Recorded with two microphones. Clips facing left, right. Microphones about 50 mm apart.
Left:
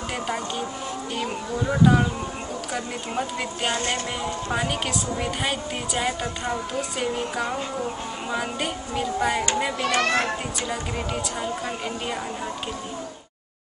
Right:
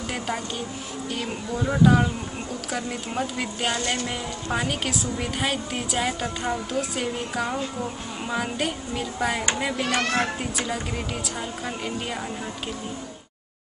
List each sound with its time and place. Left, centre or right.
1.1 s a woman's voice: centre
10.0 s speech: left